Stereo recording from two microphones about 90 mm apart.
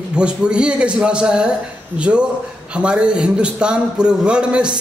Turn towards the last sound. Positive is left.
turn(degrees=-10)  # may be behind; listen again after turning